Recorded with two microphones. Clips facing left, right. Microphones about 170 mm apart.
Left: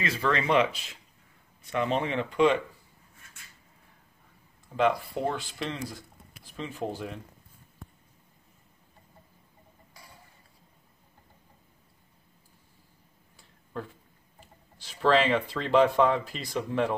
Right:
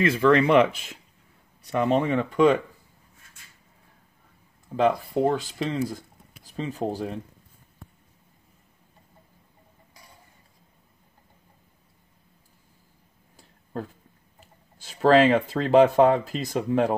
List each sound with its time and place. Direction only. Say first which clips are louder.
0.0 s speech: right 9 dB; 55° right (ahead or behind)
4.7 s speech: right 4 dB; 35° right (ahead or behind)
14.8 s speech: right 6 dB; 50° right (ahead or behind)